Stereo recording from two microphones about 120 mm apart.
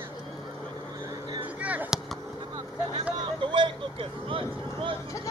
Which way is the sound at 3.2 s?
45° right (ahead or behind).